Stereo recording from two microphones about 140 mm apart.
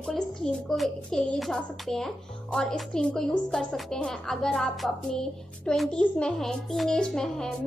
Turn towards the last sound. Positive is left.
turn(degrees=5)  # may be behind; listen again after turning